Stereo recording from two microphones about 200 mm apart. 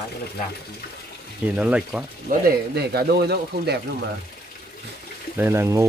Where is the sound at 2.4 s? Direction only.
55° right (ahead or behind).